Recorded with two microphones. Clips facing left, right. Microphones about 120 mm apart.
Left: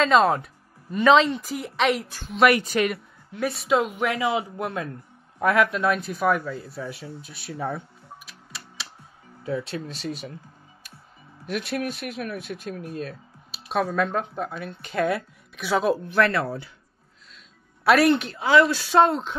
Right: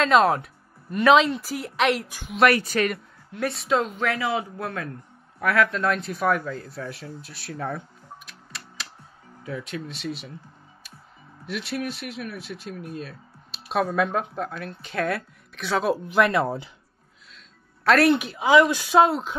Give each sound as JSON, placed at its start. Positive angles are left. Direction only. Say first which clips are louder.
{"t": 0.0, "sound": "speech", "louder": "even", "side_deg": 0}
{"t": 2.0, "sound": "a woman's voice", "louder": "even", "side_deg": -15}
{"t": 2.5, "sound": "speech", "louder": "left 1 dB", "side_deg": 15}
{"t": 2.9, "sound": "speech", "louder": "even", "side_deg": 0}
{"t": 5.7, "sound": "speech", "louder": "left 1 dB", "side_deg": 10}
{"t": 8.3, "sound": "music", "louder": "even", "side_deg": 0}
{"t": 9.4, "sound": "speech", "louder": "left 4 dB", "side_deg": 30}
{"t": 11.4, "sound": "speech", "louder": "left 2 dB", "side_deg": 50}
{"t": 13.5, "sound": "a sound", "louder": "even", "side_deg": 0}
{"t": 13.8, "sound": "speech", "louder": "right 1 dB", "side_deg": -10}
{"t": 16.1, "sound": "speech", "louder": "right 1 dB", "side_deg": -15}
{"t": 17.8, "sound": "a woman's voice", "louder": "even", "side_deg": 0}